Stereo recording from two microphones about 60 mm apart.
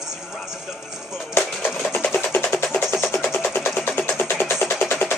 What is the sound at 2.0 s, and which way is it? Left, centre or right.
Music, left.